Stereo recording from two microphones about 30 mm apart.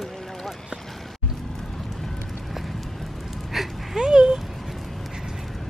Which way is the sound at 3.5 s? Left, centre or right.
Centre.